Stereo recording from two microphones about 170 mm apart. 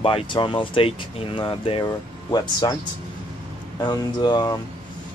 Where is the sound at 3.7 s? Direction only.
25° left (ahead or behind).